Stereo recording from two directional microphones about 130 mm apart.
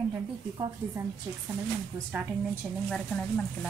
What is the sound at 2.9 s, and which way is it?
Speech, 5° left (ahead or behind).